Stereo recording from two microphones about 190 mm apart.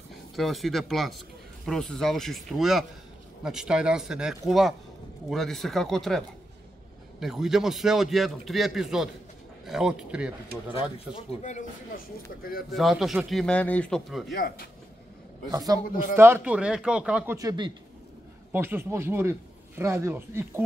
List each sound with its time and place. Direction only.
0.4 s a man's voice: centre (ahead or behind)
12.7 s a man's voice: centre (ahead or behind)
14.3 s speech: 55° left (ahead or behind)
15.5 s a man's voice: 20° right (ahead or behind)
17.4 s speech: 20° right (ahead or behind)
18.5 s a man's voice: 10° right (ahead or behind)